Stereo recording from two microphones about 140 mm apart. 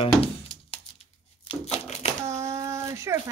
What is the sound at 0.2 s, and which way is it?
Music, 40° left (ahead or behind).